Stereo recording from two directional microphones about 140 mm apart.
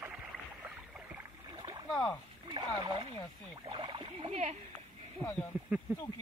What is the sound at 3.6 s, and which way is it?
Rowboat, 35° right (ahead or behind).